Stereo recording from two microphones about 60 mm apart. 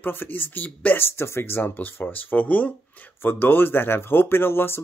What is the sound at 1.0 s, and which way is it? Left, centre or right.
Speech, left.